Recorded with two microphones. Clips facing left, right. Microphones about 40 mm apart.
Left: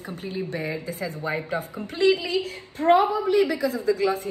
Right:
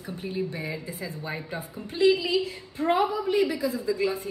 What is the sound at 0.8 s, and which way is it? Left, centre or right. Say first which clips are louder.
Speech: left 5 dB; left.